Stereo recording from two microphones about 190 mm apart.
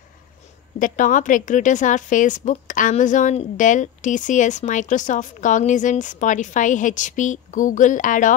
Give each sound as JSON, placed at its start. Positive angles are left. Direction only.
{"t": 0.7, "sound": "a woman's voice", "side_deg": 45}